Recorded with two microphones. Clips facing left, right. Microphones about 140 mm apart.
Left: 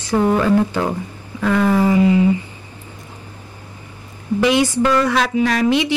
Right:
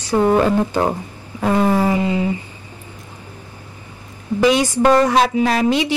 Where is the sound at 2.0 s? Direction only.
25° right (ahead or behind).